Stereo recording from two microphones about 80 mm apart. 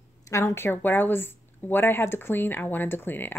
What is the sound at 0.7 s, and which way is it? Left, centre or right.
Speech, left.